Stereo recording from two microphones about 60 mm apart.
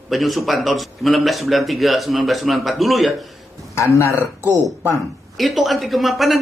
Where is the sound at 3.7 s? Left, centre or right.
Left.